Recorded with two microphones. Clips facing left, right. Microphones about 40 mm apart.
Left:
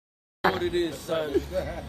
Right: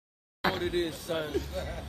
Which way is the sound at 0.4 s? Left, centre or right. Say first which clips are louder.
Left 5 dB; centre.